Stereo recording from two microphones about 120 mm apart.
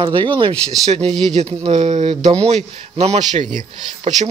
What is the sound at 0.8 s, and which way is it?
Speech, 55° right (ahead or behind).